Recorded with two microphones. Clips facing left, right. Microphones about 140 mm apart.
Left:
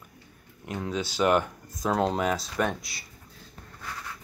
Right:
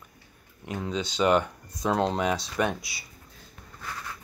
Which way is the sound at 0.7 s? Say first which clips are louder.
Even; 5° left (ahead or behind).